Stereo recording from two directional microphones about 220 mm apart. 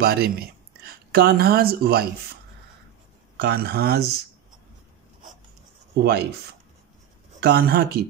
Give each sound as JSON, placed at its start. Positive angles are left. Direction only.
{"t": 0.0, "sound": "speech", "side_deg": -45}
{"t": 3.3, "sound": "speech", "side_deg": -50}
{"t": 5.9, "sound": "speech", "side_deg": -50}
{"t": 7.3, "sound": "speech", "side_deg": -50}